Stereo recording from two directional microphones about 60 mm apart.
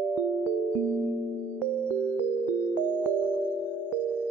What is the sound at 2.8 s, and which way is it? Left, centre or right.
Music, right.